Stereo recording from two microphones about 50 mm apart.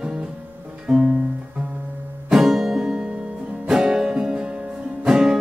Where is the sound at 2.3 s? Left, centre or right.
Centre.